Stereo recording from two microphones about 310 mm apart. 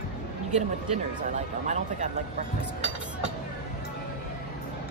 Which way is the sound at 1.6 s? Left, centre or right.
Right.